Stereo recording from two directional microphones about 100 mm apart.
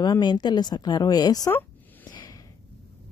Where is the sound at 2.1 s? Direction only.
45° left (ahead or behind).